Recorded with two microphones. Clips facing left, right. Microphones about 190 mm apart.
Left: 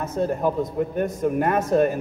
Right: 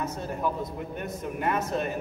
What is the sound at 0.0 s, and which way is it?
A man's voice, 50° left (ahead or behind).